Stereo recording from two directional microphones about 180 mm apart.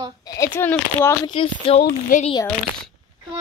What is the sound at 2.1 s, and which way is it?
Speech, 50° left (ahead or behind).